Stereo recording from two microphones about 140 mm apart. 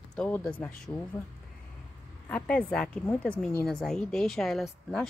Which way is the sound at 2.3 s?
10° left (ahead or behind).